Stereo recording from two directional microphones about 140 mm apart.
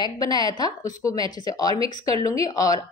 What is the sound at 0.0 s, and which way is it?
A woman's voice, 30° left (ahead or behind).